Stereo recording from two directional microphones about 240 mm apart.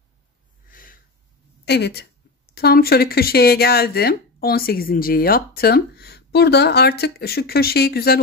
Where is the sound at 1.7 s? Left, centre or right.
Left.